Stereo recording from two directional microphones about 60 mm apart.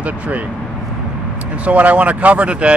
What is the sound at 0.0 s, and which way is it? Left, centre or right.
Speech, right.